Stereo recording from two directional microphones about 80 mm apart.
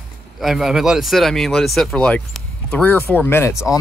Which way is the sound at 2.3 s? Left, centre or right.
Centre.